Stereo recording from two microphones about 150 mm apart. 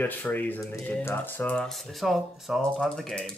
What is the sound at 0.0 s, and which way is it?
Speech, 10° left (ahead or behind).